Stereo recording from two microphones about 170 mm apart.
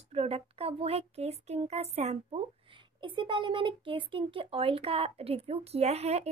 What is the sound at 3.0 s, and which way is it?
Speech, 30° right (ahead or behind).